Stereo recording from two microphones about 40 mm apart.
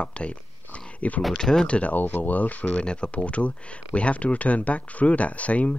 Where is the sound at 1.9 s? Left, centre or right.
Left.